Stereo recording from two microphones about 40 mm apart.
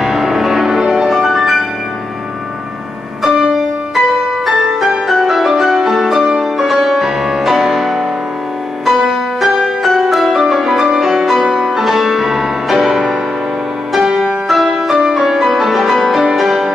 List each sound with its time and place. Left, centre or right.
0.0 s music: centre
3.3 s music: centre
11.4 s music: centre